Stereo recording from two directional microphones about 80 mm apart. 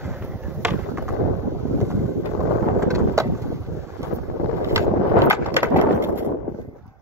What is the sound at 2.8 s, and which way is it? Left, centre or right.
Vehicle, right.